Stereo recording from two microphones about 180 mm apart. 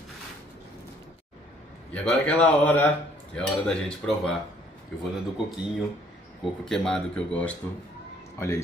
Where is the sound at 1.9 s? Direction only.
5° left (ahead or behind).